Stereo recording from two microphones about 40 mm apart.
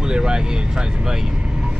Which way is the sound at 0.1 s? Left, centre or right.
Centre.